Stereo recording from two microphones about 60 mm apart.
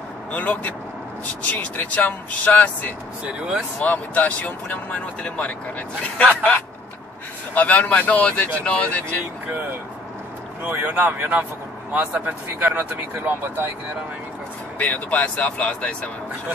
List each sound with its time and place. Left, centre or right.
0.3 s speech: left
3.3 s speech: centre
3.8 s speech: left
7.5 s speech: left
10.7 s speech: right
14.8 s speech: left